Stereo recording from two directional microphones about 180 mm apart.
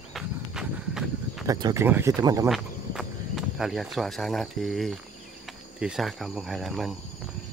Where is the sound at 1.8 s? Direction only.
10° right (ahead or behind).